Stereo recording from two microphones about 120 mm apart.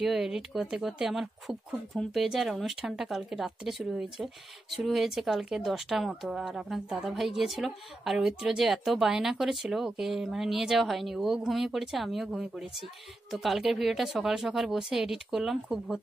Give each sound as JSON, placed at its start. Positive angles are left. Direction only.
{"t": 0.0, "sound": "speech", "side_deg": -5}